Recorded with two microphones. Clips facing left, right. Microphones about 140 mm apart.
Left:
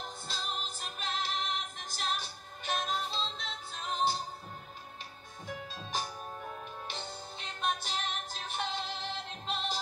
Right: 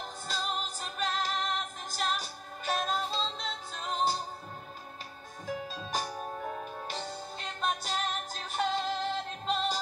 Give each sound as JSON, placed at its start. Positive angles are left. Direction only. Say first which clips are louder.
{"t": 0.3, "sound": "music", "louder": "right 6 dB", "side_deg": -40}
{"t": 5.9, "sound": "music", "louder": "right 2 dB", "side_deg": -40}